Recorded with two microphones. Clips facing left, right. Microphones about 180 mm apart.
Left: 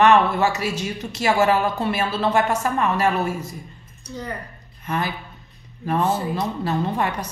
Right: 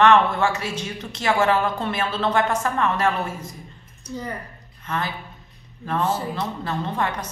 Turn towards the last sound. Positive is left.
turn(degrees=10)  # may be behind; listen again after turning